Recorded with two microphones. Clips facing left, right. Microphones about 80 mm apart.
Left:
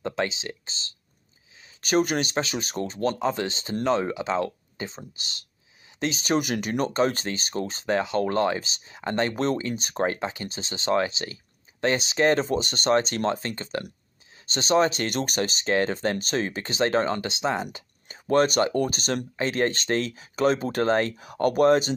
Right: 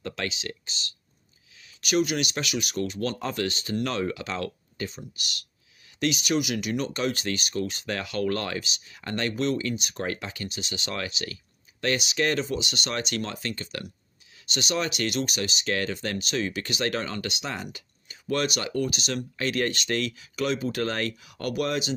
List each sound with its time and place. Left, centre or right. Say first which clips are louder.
0.0 s speech: left 5 dB; left
9.3 s speech: left 1 dB; left
15.6 s speech: left 6 dB; left
17.7 s a sound: left 4 dB; left
18.3 s speech: left 7 dB; left
19.3 s speech: left 2 dB; left